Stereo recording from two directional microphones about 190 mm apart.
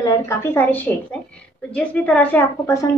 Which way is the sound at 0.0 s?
15° left (ahead or behind).